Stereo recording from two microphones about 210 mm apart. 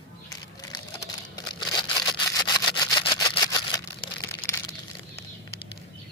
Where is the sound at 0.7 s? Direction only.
20° left (ahead or behind).